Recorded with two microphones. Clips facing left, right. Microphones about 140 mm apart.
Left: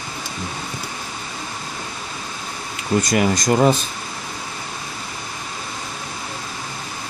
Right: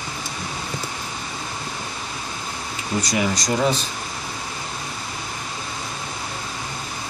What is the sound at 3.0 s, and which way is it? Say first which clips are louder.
Speech: left 4 dB; 50° left (ahead or behind).